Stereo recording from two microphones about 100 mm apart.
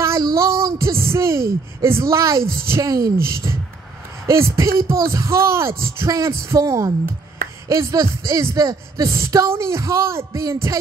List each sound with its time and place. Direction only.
0.0 s child singing: 30° right (ahead or behind)
0.8 s a woman's voice: 30° right (ahead or behind)